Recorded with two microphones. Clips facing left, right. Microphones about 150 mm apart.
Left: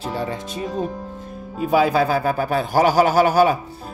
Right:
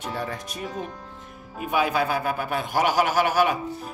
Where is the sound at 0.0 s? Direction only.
25° left (ahead or behind).